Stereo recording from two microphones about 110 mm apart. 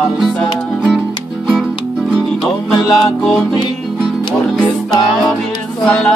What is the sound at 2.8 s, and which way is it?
Music, 35° left (ahead or behind).